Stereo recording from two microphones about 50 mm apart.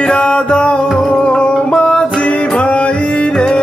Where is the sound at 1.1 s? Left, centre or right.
Centre.